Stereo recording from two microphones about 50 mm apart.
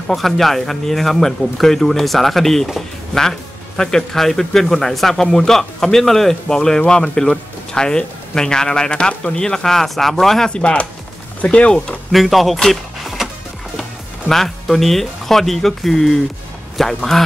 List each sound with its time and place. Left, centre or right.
0.1 s speech: centre
10.5 s speech: left
12.1 s speech: centre
13.0 s music: centre
14.3 s a man's voice: centre